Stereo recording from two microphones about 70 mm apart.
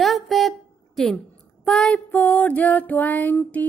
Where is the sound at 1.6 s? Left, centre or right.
Centre.